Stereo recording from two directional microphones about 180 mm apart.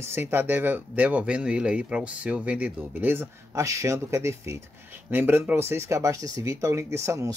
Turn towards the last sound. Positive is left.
turn(degrees=-15)  # may be behind; listen again after turning